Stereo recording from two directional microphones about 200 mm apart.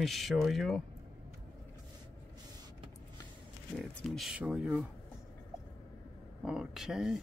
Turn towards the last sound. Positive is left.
turn(degrees=0)  # may be behind; listen again after turning